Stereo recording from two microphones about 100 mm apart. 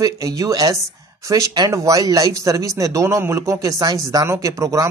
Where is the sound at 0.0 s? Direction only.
35° right (ahead or behind).